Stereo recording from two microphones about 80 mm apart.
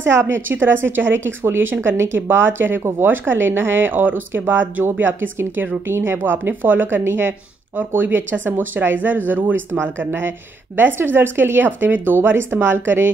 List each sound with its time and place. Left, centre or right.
0.0 s a woman's voice: right